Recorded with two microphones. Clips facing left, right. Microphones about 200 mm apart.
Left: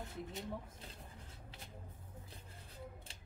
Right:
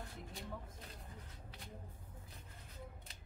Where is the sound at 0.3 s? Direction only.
20° left (ahead or behind).